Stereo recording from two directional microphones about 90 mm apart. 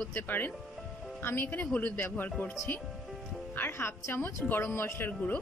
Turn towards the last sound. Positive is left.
turn(degrees=25)  # may be behind; listen again after turning